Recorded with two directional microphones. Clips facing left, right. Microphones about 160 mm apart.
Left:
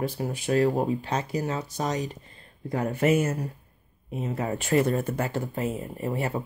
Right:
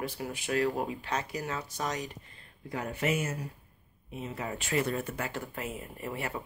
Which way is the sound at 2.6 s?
45° left (ahead or behind).